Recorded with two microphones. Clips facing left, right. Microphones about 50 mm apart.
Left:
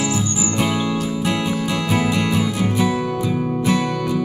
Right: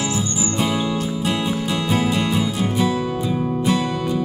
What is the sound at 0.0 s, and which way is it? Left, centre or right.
Music, left.